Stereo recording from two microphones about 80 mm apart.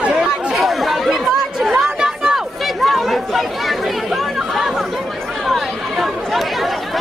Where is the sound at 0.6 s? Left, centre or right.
Centre.